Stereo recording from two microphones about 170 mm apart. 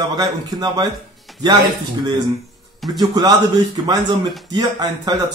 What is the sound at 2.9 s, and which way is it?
Speech, 25° right (ahead or behind).